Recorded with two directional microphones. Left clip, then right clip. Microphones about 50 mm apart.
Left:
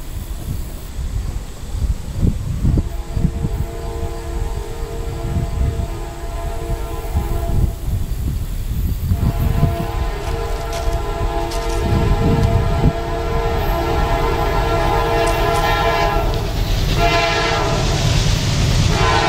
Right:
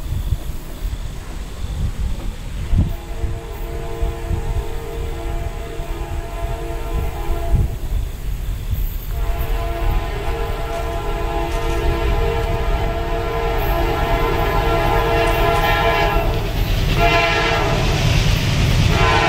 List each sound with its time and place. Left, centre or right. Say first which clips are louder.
6.3 s train: even; centre
9.3 s train: left 2 dB; centre
11.0 s music: left 1 dB; centre
11.4 s train: even; left
11.8 s train: left 1 dB; centre